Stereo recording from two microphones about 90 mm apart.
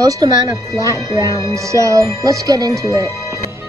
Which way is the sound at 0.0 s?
40° right (ahead or behind).